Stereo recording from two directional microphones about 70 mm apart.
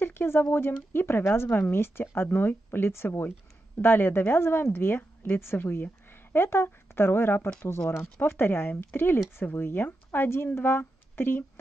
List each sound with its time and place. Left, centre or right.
0.0 s speech: left